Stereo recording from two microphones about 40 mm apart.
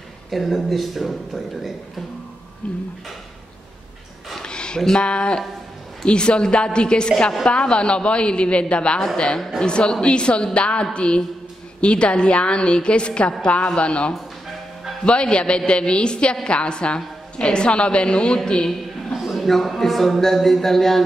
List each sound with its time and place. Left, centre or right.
0.3 s speech: centre
2.6 s a woman's voice: left
4.4 s a sound: left
4.9 s a woman's voice: left
19.1 s a sound: centre
19.4 s speech: centre